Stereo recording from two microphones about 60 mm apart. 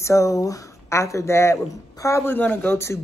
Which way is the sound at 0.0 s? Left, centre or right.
Left.